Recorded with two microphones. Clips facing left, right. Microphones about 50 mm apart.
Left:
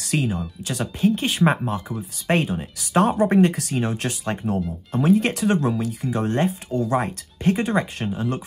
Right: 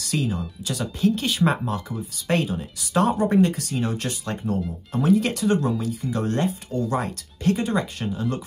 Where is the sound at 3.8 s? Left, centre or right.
Left.